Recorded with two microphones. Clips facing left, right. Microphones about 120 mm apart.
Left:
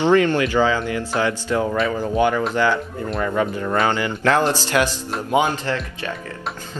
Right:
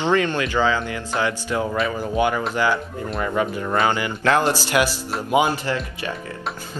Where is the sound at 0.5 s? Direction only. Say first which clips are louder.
Left 1 dB; 65° left (ahead or behind).